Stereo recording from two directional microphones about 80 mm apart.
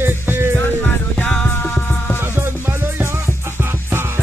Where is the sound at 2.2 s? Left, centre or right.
Right.